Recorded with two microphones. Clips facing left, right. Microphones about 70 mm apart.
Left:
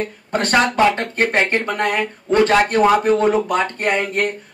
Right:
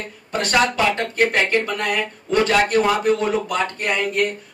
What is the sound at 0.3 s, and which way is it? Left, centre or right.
Speech, left.